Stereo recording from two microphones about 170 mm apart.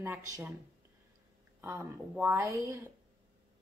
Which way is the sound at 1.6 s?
15° right (ahead or behind).